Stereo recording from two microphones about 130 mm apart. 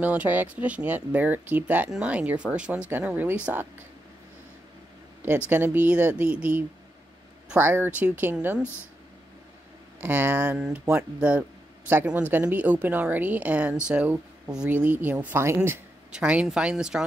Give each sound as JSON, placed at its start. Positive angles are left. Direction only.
{"t": 0.0, "sound": "a woman's voice", "side_deg": -10}
{"t": 5.5, "sound": "a woman's voice", "side_deg": -15}
{"t": 9.9, "sound": "a woman's voice", "side_deg": -15}